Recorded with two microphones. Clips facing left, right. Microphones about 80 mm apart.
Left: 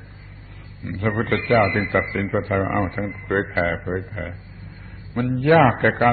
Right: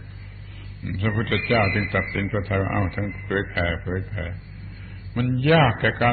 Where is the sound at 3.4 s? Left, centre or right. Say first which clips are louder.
Left 4 dB; left.